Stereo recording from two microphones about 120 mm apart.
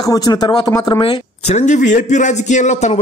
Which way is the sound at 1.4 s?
80° left.